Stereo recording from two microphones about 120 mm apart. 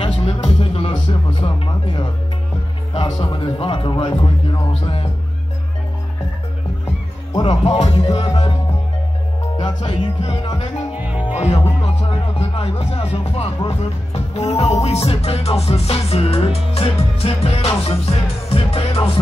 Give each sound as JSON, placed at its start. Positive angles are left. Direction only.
{"t": 0.0, "sound": "music", "side_deg": 50}
{"t": 3.2, "sound": "speech", "side_deg": 45}
{"t": 7.4, "sound": "music", "side_deg": 65}
{"t": 9.6, "sound": "music", "side_deg": 40}
{"t": 11.0, "sound": "music", "side_deg": -15}
{"t": 11.3, "sound": "speech", "side_deg": 60}